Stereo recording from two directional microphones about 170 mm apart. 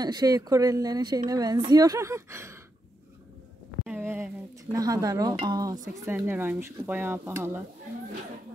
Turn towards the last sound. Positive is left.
turn(degrees=-15)  # may be behind; listen again after turning